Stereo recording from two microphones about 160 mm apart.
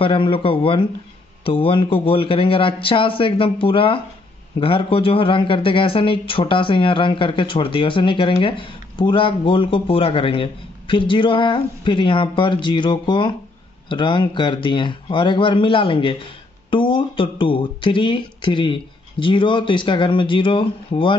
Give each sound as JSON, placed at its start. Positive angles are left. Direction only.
{"t": 0.0, "sound": "a man's voice", "side_deg": 30}